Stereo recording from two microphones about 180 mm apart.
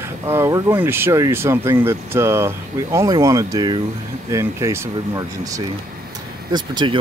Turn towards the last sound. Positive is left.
turn(degrees=-25)  # may be behind; listen again after turning